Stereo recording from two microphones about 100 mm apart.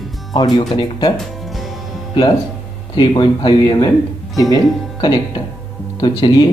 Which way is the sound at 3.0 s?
50° left (ahead or behind).